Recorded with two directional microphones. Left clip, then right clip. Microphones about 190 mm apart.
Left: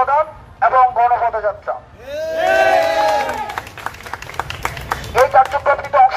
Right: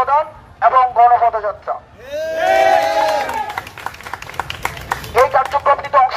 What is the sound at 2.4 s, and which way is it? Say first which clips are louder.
Crowd: right 1 dB; 20° left (ahead or behind).